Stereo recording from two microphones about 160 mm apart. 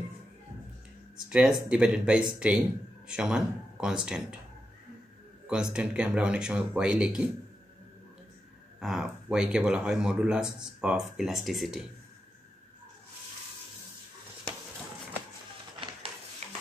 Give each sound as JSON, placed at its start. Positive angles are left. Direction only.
{"t": 1.3, "sound": "speech", "side_deg": -5}
{"t": 5.5, "sound": "speech", "side_deg": -5}
{"t": 8.7, "sound": "speech", "side_deg": 0}
{"t": 16.4, "sound": "a sound", "side_deg": -40}